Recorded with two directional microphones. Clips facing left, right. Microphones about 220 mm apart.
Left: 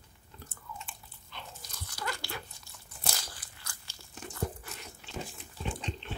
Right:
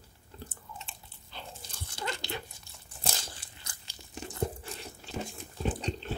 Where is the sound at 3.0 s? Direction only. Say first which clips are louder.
Right 2 dB; 25° right (ahead or behind).